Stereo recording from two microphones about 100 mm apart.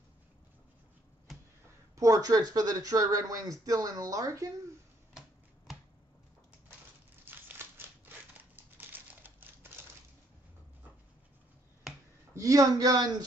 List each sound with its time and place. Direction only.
2.0 s speech: 35° right (ahead or behind)
7.2 s scissors: 20° right (ahead or behind)
8.7 s typewriter: 20° right (ahead or behind)
12.4 s speech: 35° right (ahead or behind)